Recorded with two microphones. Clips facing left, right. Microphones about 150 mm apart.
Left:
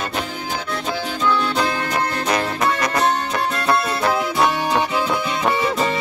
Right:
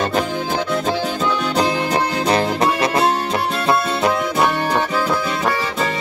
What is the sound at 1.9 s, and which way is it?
Music, 30° right (ahead or behind).